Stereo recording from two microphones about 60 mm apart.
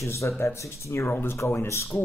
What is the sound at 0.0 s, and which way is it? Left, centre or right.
Speech, left.